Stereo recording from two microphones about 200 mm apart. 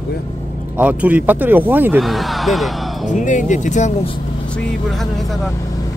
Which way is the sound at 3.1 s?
40° left (ahead or behind).